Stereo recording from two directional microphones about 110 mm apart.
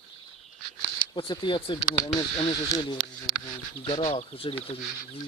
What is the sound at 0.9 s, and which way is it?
Speech, 45° left (ahead or behind).